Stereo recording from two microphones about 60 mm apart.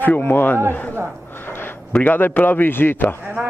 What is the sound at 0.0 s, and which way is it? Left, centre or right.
Speech, left.